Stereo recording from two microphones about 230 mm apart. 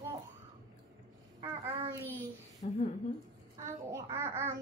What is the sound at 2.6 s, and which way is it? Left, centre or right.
Speech, left.